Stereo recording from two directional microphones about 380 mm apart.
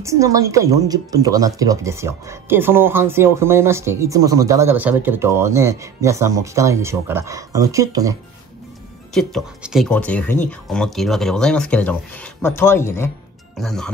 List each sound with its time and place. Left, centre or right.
0.0 s speech: centre